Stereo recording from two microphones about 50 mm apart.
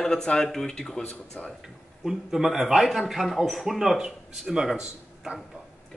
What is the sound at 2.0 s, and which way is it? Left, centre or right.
A man's voice, centre.